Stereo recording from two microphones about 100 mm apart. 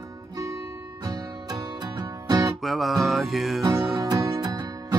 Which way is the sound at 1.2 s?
45° right (ahead or behind).